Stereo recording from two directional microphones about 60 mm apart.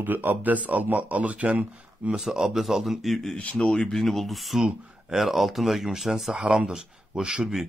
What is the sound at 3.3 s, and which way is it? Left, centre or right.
Speech, centre.